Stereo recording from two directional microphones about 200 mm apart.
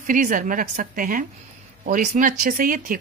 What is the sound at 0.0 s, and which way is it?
Speech, 45° right (ahead or behind).